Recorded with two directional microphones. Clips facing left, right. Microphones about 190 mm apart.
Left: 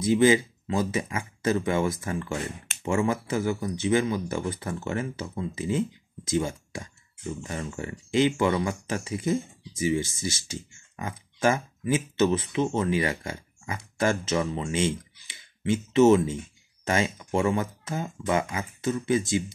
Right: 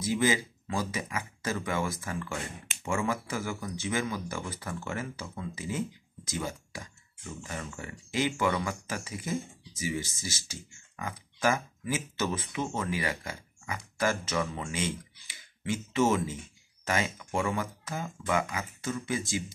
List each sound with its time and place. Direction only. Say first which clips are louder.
0.0 s speech: left 8 dB; 25° left (ahead or behind)